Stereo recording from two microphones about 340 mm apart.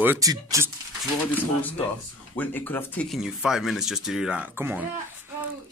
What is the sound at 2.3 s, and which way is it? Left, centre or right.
Speech, centre.